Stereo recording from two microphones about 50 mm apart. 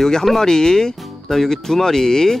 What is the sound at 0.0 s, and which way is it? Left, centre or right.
Speech, centre.